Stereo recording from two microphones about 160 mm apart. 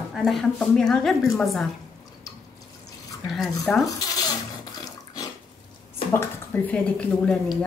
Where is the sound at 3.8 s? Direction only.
25° left (ahead or behind).